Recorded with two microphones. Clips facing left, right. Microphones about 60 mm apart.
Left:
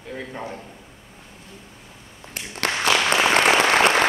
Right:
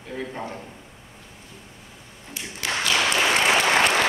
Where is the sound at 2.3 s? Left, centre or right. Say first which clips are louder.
Left 3 dB; left.